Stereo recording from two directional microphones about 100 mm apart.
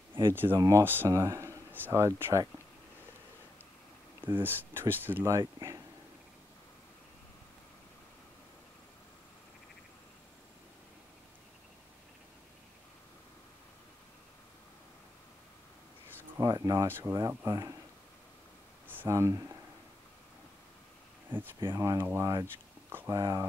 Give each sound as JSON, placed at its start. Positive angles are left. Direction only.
{"t": 0.1, "sound": "speech", "side_deg": -20}
{"t": 0.6, "sound": "speech", "side_deg": -30}
{"t": 4.2, "sound": "speech", "side_deg": -20}
{"t": 16.3, "sound": "speech", "side_deg": -35}
{"t": 16.8, "sound": "speech", "side_deg": -20}
{"t": 17.5, "sound": "speech", "side_deg": -35}
{"t": 19.0, "sound": "speech", "side_deg": -30}
{"t": 21.5, "sound": "speech", "side_deg": -40}
{"t": 21.9, "sound": "speech", "side_deg": -25}
{"t": 22.8, "sound": "a sound", "side_deg": -20}
{"t": 23.1, "sound": "speech", "side_deg": -40}